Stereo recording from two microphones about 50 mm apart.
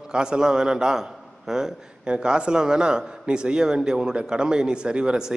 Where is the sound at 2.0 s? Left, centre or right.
Centre.